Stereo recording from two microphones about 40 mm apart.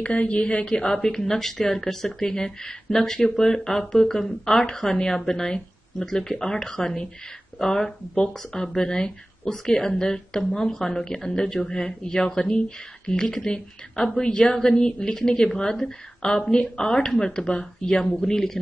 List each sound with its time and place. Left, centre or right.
0.0 s speech: left
0.9 s speech: centre